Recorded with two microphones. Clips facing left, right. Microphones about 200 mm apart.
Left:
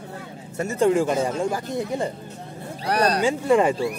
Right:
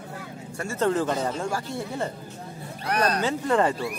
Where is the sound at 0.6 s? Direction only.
15° left (ahead or behind).